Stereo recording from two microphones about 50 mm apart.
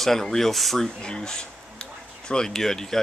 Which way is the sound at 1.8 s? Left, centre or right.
Centre.